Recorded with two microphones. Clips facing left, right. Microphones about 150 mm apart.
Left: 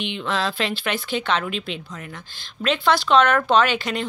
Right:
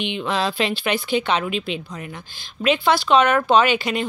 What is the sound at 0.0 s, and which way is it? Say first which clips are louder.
Speech: right 2 dB; 15° right (ahead or behind).